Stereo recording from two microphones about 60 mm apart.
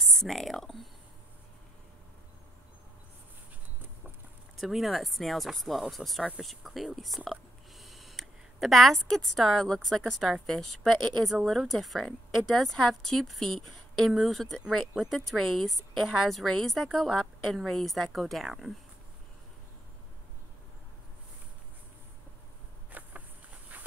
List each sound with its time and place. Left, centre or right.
0.0 s speech: centre
4.6 s a woman's voice: centre
22.8 s insect: right